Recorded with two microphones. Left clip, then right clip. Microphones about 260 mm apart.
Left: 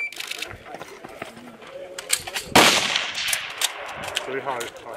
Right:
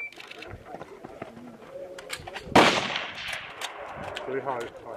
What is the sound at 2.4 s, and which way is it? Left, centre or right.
Gunshot, centre.